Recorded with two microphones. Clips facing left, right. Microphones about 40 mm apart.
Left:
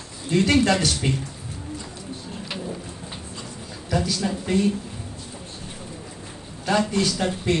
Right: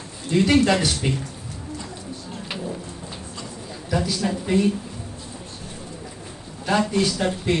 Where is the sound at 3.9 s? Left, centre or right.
Centre.